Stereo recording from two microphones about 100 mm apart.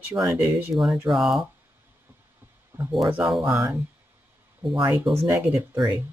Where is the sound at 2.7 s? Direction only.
20° right (ahead or behind).